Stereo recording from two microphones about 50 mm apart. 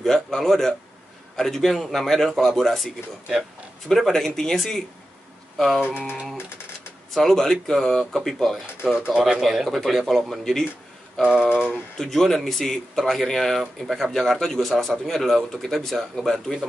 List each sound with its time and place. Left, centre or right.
0.0 s speech: centre
3.9 s speech: centre
7.2 s speech: centre
8.8 s speech: centre
9.2 s speech: centre
11.2 s speech: right
12.0 s speech: centre